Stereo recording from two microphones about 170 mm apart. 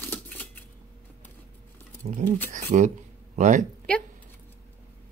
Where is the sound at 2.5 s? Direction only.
50° right (ahead or behind).